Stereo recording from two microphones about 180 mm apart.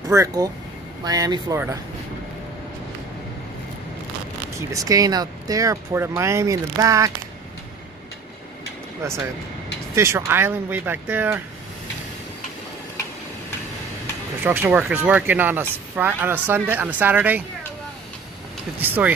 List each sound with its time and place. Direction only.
0.1 s speech: 20° right (ahead or behind)
4.6 s speech: 20° right (ahead or behind)
9.0 s speech: 15° right (ahead or behind)
14.4 s speech: 10° right (ahead or behind)
18.8 s speech: 10° right (ahead or behind)